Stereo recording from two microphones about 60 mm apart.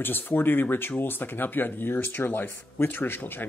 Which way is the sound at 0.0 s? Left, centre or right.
Left.